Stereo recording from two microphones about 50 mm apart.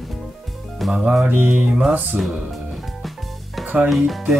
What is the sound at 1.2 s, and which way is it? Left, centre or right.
Mantra, right.